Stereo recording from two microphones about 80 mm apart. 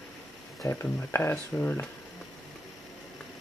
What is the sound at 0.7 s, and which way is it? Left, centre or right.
Speech, left.